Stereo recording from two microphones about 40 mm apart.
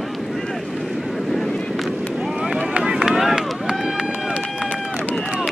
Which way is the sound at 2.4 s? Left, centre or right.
Centre.